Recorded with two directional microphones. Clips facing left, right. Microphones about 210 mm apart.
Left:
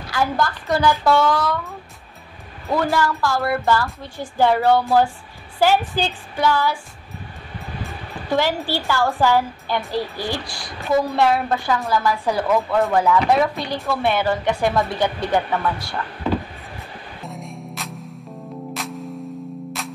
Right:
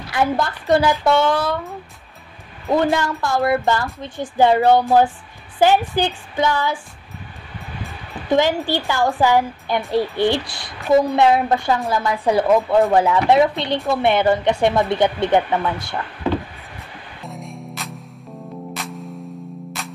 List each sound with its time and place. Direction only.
0.1 s a woman's voice: 25° right (ahead or behind)
2.7 s a woman's voice: 20° right (ahead or behind)
8.3 s a woman's voice: 20° right (ahead or behind)
9.9 s a woman's voice: 25° right (ahead or behind)
17.3 s music: centre (ahead or behind)